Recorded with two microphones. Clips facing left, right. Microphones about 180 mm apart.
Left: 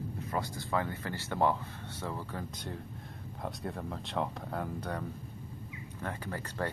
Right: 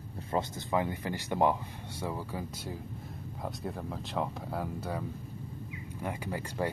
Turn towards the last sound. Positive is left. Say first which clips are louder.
# right 3 dB
turn(degrees=-10)  # may be behind; listen again after turning